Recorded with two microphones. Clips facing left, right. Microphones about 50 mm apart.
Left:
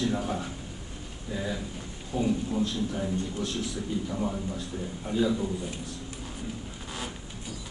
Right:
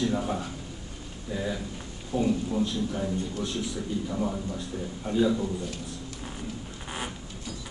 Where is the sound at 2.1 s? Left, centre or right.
Centre.